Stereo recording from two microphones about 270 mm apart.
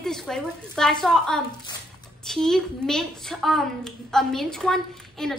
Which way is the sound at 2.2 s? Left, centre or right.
Centre.